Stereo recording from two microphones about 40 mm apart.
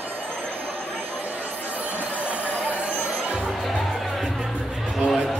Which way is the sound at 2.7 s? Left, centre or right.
Right.